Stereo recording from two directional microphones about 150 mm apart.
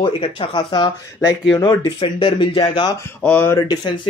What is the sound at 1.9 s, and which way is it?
Speech, 35° left (ahead or behind).